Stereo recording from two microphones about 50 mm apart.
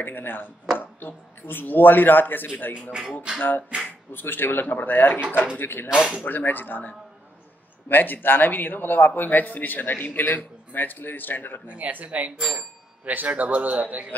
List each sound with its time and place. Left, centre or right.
0.0 s speech: left
2.7 s speech: centre
3.3 s speech: left
5.9 s speech: centre
6.2 s speech: left
7.9 s speech: left
11.6 s speech: right